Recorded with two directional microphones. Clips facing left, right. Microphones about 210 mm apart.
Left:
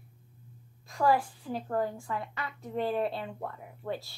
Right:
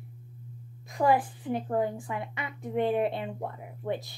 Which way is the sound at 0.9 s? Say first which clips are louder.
Right 2 dB; 20° right (ahead or behind).